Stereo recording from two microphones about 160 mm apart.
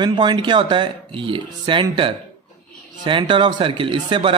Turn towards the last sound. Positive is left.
turn(degrees=-30)  # may be behind; listen again after turning